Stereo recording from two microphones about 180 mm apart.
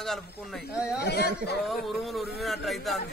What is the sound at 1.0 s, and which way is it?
Speech, 60° left (ahead or behind).